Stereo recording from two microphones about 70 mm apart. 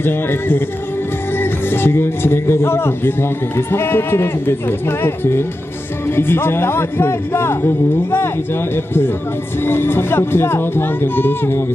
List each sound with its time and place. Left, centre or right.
0.0 s speech: left